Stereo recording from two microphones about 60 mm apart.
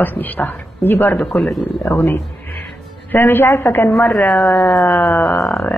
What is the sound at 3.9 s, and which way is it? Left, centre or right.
Speech, centre.